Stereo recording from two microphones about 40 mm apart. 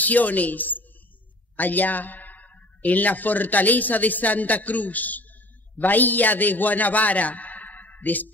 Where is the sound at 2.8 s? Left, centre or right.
Left.